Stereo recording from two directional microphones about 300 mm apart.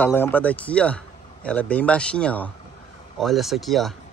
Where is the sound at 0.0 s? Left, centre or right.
Centre.